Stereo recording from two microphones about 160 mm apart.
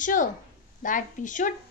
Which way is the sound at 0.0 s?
55° left (ahead or behind).